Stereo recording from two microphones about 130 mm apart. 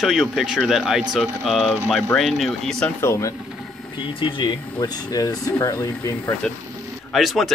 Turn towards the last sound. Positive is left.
turn(degrees=0)  # may be behind; listen again after turning